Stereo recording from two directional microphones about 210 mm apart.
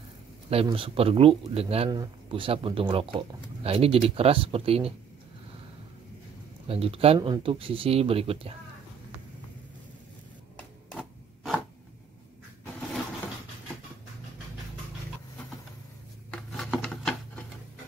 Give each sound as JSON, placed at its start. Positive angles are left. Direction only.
{"t": 0.5, "sound": "a man's voice", "side_deg": -25}
{"t": 6.7, "sound": "a man's voice", "side_deg": -25}
{"t": 10.9, "sound": "a sound", "side_deg": 0}
{"t": 16.3, "sound": "rub", "side_deg": 5}